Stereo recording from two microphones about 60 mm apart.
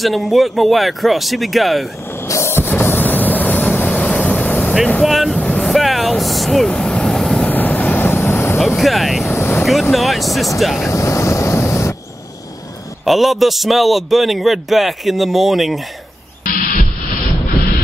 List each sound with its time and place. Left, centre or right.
0.0 s a man's voice: centre
2.2 s music: left
2.5 s vehicle: left
5.0 s speech: centre
5.6 s vehicle: centre
6.7 s vehicle: centre
7.4 s vehicle: left
8.7 s a man's voice: centre
9.3 s vehicle: left
9.7 s a man's voice: centre
10.9 s a sound: left
13.0 s a man's voice: centre